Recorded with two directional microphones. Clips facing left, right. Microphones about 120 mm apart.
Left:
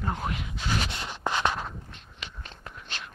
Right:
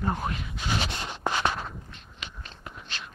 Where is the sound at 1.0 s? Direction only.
10° right (ahead or behind).